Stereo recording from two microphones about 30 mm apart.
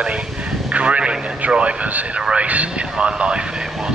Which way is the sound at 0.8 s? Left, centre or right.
Right.